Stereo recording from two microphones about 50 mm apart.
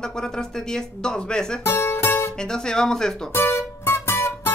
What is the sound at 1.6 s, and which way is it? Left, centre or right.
Music, left.